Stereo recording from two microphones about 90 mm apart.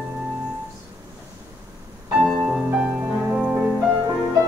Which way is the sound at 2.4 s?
10° right (ahead or behind).